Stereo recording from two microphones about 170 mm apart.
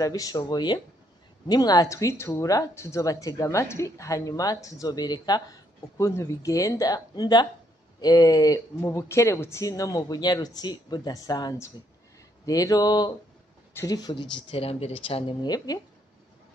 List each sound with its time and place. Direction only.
0.0 s speech: 20° left (ahead or behind)